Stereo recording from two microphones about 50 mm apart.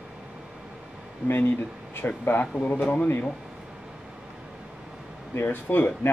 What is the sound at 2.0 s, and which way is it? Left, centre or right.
Speech, left.